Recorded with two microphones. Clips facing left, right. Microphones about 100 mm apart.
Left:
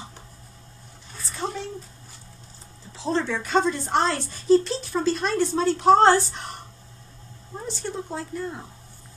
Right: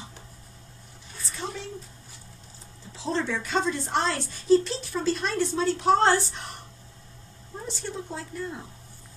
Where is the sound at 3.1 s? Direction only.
35° left (ahead or behind).